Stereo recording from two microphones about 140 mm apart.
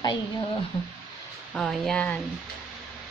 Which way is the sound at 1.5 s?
5° left (ahead or behind).